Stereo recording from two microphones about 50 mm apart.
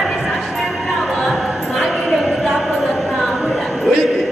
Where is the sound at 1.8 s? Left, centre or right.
Centre.